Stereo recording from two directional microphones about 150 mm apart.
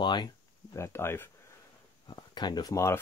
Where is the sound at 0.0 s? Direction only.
30° left (ahead or behind).